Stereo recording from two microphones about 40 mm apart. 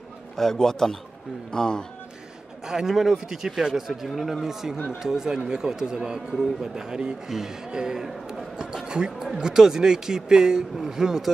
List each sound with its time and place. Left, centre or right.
0.4 s a man's voice: centre
2.6 s speech: centre
8.8 s basketball bounce: right
9.2 s speech: centre